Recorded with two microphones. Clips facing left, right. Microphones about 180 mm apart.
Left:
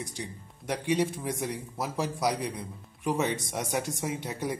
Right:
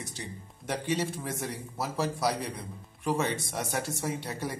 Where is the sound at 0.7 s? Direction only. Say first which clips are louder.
Left 3 dB; 15° left (ahead or behind).